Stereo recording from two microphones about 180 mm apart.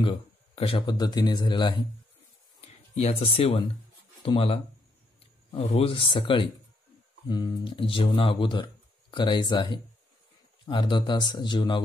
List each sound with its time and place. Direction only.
0.0 s speech: 30° left (ahead or behind)
2.6 s speech: 35° left (ahead or behind)